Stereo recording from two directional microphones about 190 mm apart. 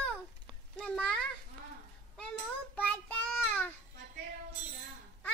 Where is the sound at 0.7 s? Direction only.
5° left (ahead or behind).